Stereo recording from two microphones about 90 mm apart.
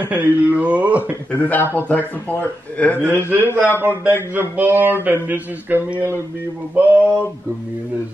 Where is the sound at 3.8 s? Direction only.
25° right (ahead or behind).